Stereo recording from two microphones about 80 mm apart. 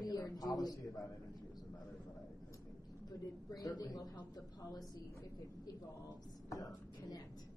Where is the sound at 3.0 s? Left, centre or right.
Left.